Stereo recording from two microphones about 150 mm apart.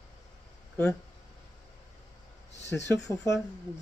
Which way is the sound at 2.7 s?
10° left (ahead or behind).